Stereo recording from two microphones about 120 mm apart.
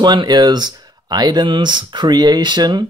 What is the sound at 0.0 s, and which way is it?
Speech, 35° right (ahead or behind).